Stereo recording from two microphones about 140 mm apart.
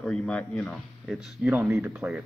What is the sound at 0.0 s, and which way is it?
Speech, 5° left (ahead or behind).